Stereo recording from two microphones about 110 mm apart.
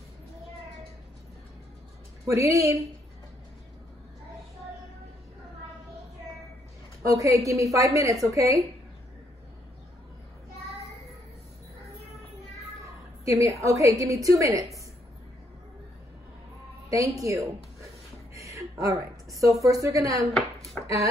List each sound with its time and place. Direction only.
2.2 s a woman's voice: 25° right (ahead or behind)
7.0 s a woman's voice: 30° right (ahead or behind)
12.8 s a woman's voice: 30° right (ahead or behind)
16.9 s a woman's voice: 30° right (ahead or behind)
18.3 s a sound: 30° right (ahead or behind)
19.6 s a woman's voice: 30° right (ahead or behind)
20.8 s a sound: 10° left (ahead or behind)